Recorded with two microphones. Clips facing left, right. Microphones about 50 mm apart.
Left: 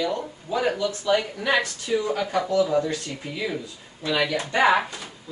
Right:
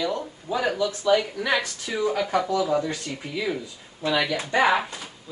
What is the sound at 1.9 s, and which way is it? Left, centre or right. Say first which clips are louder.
Speech: even; right.